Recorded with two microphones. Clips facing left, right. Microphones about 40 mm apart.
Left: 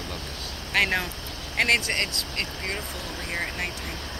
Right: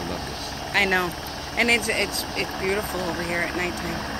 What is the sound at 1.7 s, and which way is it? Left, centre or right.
Speech, right.